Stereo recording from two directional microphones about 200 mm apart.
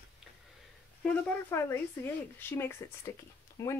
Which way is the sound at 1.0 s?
10° left (ahead or behind).